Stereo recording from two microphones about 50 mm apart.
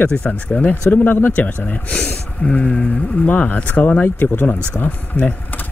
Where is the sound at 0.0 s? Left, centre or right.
Left.